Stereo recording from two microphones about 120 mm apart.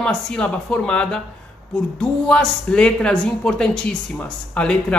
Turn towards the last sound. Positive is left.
turn(degrees=10)  # may be behind; listen again after turning